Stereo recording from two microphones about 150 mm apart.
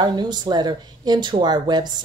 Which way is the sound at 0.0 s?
30° right (ahead or behind).